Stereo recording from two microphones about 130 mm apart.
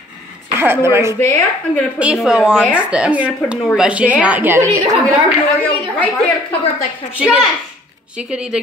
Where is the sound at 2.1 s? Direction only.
5° right (ahead or behind); by 5.1 s 25° right (ahead or behind).